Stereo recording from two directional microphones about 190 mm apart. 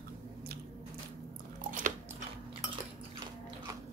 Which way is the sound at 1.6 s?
45° right (ahead or behind).